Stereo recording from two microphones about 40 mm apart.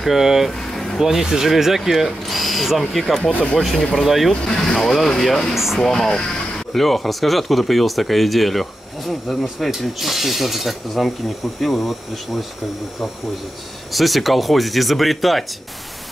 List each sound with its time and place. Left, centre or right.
0.0 s speech: centre
0.5 s a sound: centre
0.9 s speech: centre
3.3 s speech: left
3.7 s speech: centre
4.0 s speech: centre
4.3 s speech: centre
5.5 s speech: centre
5.8 s speech: centre
13.9 s speech: centre